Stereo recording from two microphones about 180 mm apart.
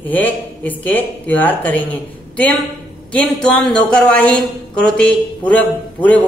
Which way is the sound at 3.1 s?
5° left (ahead or behind).